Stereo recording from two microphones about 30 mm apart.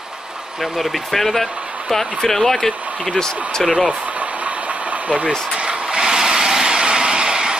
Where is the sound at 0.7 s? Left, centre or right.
Centre.